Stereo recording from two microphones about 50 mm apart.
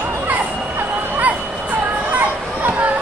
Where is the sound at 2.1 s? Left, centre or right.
Right.